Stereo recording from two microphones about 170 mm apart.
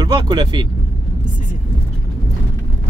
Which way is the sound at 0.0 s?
25° right (ahead or behind).